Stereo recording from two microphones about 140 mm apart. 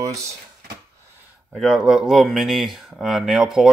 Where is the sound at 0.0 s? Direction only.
25° right (ahead or behind).